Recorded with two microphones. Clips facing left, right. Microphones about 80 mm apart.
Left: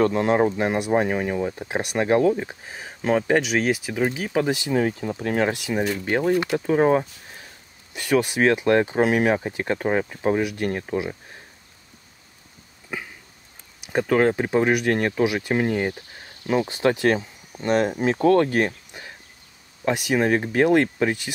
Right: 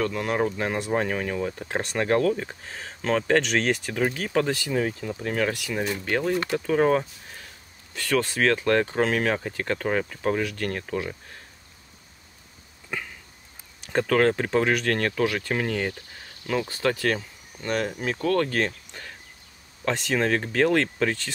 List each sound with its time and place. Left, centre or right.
0.0 s speech: left
5.2 s speech: left
12.9 s a sound: centre
13.7 s speech: centre